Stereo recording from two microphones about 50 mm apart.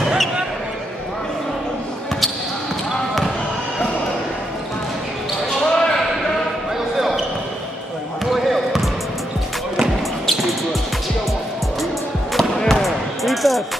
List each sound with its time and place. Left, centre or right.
5.7 s basketball bounce: centre
8.3 s basketball bounce: centre
12.4 s basketball bounce: centre
12.8 s basketball bounce: centre